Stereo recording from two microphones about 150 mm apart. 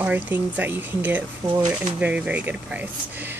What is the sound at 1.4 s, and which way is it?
Speech, 25° right (ahead or behind).